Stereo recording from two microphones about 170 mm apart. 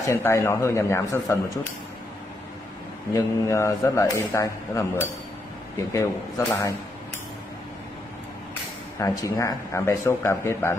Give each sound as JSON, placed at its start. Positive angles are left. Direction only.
{"t": 0.0, "sound": "speech", "side_deg": 15}
{"t": 3.1, "sound": "a man's voice", "side_deg": 15}
{"t": 8.9, "sound": "speech", "side_deg": 20}